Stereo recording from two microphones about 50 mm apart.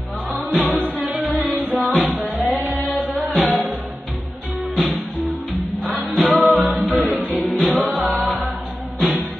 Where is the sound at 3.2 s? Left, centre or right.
Centre.